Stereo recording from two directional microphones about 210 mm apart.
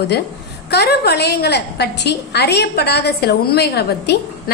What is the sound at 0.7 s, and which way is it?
A woman's voice, 50° left (ahead or behind).